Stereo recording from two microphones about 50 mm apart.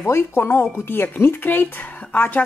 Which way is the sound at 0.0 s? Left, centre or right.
Left.